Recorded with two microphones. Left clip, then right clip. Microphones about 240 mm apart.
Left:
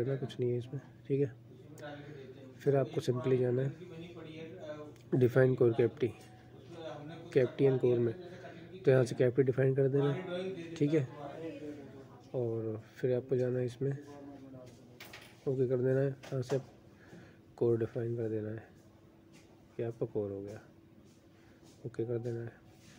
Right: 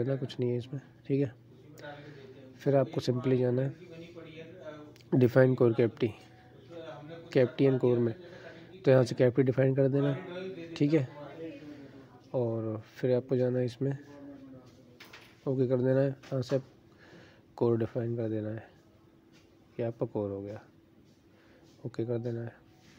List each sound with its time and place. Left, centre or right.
0.3 s speech: right
2.6 s speech: right
5.1 s speech: right
7.2 s a man's voice: right
12.4 s speech: right
15.5 s speech: right
19.8 s speech: right
21.9 s speech: right